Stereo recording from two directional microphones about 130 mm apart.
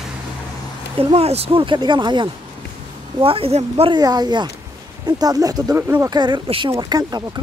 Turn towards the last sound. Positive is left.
turn(degrees=-30)  # may be behind; listen again after turning